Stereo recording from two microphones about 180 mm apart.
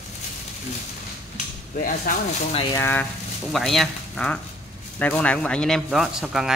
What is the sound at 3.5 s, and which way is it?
Speech, centre (ahead or behind).